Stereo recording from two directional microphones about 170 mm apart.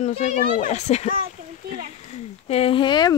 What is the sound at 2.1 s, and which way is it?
Speech, 35° left (ahead or behind).